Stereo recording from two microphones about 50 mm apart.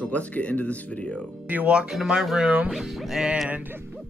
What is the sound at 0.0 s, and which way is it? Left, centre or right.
Speech, left.